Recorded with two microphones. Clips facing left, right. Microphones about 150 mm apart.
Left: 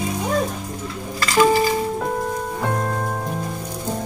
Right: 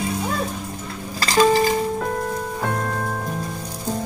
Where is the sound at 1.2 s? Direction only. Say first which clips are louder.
Even; 35° right (ahead or behind).